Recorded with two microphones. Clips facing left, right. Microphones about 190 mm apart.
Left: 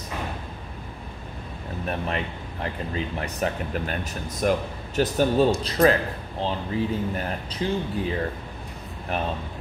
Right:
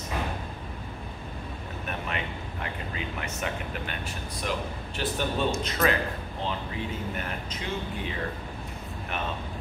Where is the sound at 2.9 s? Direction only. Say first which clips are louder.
Left 5 dB; 35° left (ahead or behind).